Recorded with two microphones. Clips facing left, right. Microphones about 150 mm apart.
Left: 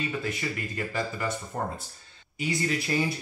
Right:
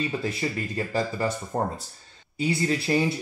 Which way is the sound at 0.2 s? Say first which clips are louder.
Right 4 dB; 30° right (ahead or behind).